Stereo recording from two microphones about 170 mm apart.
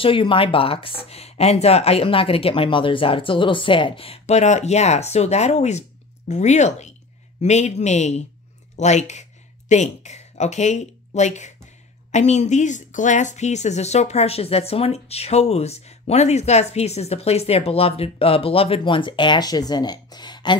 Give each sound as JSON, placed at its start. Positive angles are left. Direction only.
{"t": 0.0, "sound": "speech", "side_deg": 30}